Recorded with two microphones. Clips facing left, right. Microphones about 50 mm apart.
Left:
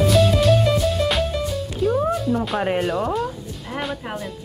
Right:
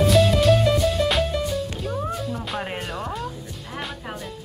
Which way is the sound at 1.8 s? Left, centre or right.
Centre.